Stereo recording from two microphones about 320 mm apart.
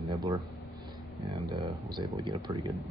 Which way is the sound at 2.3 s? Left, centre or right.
Centre.